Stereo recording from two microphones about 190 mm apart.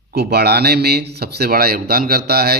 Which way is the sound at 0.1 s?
55° right (ahead or behind).